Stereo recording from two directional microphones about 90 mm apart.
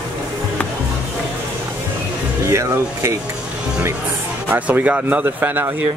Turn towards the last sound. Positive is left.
turn(degrees=-20)  # may be behind; listen again after turning